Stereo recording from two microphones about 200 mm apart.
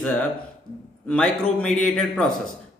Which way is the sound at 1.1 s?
5° left (ahead or behind).